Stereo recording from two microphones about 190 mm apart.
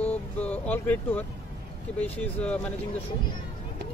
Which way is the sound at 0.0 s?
10° left (ahead or behind).